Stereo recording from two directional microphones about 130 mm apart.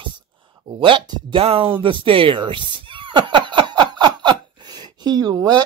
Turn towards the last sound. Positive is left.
turn(degrees=-30)  # may be behind; listen again after turning